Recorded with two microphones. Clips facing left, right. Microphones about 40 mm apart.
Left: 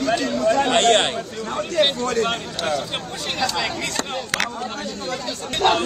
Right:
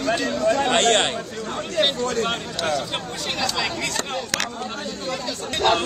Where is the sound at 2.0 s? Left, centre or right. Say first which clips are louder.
Left 2 dB; left.